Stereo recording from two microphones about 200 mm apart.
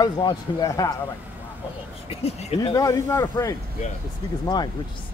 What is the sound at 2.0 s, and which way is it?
Speech, 30° left (ahead or behind).